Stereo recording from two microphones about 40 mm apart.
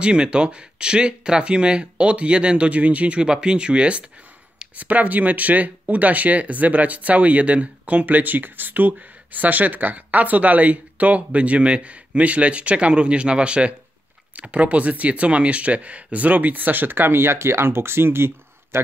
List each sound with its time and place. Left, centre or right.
0.0 s speech: right
3.2 s speech: right
4.7 s speech: right